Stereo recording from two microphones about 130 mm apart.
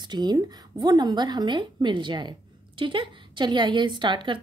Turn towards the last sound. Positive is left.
turn(degrees=-35)  # may be behind; listen again after turning